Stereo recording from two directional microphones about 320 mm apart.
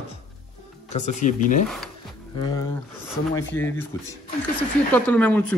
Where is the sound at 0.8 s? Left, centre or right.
Left.